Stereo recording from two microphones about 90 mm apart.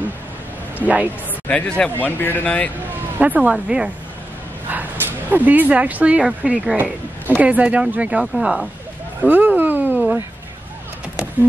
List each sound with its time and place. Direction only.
0.7 s speech: 15° right (ahead or behind)
1.5 s speech: 15° left (ahead or behind)
3.2 s speech: 15° right (ahead or behind)
9.2 s a sound: 20° right (ahead or behind)